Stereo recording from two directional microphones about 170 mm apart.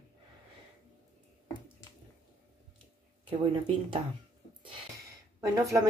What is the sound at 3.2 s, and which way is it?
Speech, 30° right (ahead or behind).